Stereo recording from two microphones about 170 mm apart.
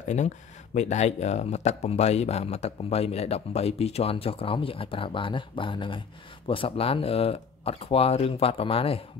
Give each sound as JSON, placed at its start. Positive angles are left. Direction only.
{"t": 0.7, "sound": "speech", "side_deg": 40}